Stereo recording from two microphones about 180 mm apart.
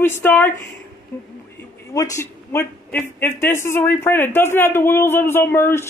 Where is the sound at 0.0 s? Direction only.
10° left (ahead or behind).